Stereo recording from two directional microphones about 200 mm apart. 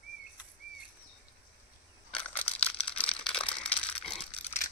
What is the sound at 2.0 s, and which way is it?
Crushing, 5° left (ahead or behind).